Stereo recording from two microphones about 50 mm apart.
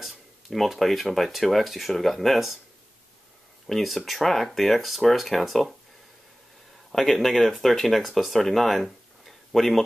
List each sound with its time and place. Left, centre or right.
0.0 s speech: centre
3.6 s speech: centre
6.9 s speech: centre